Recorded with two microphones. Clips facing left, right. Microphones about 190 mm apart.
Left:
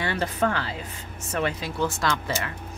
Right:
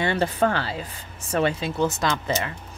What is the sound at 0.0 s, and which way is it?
Speech, 30° right (ahead or behind).